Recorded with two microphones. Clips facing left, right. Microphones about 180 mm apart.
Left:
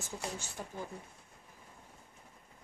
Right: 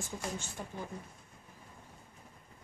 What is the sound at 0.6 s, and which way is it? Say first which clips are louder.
Speech: even; 5° left (ahead or behind).